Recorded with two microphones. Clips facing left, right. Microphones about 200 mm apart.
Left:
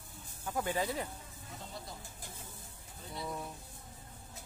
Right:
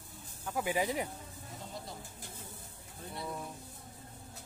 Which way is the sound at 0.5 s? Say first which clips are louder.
Right 2 dB; 10° right (ahead or behind).